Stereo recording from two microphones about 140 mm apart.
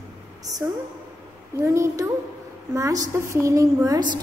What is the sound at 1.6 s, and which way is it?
A woman's voice, 20° right (ahead or behind).